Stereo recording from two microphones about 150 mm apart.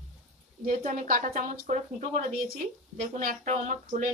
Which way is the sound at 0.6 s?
60° right (ahead or behind).